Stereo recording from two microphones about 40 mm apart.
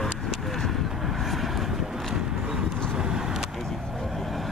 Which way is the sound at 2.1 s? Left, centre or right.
Centre.